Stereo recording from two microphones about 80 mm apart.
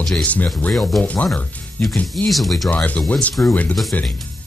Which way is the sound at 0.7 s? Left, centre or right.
Centre.